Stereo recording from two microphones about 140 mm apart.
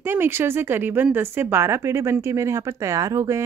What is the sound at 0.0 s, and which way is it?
Speech, 15° right (ahead or behind).